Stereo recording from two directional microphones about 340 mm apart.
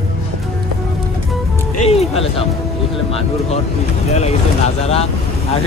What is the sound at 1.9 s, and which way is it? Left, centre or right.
Music, centre.